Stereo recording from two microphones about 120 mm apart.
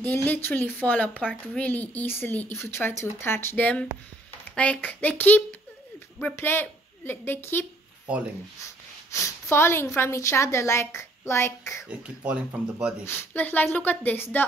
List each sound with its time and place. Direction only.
0.0 s a woman's voice: 15° left (ahead or behind)
8.6 s speech: 25° left (ahead or behind)
11.9 s speech: 10° right (ahead or behind)
13.0 s a woman's voice: 20° left (ahead or behind)